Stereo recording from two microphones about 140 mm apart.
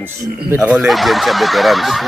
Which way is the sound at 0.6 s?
Centre (ahead or behind).